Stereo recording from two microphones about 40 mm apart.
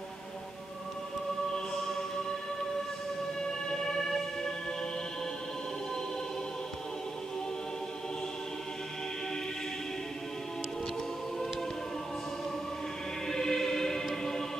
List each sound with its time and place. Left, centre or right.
1.5 s chant: centre
3.4 s music: centre
13.3 s choir: centre